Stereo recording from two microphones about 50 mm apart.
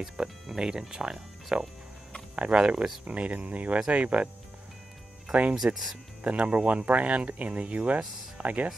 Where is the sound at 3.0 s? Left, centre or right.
Right.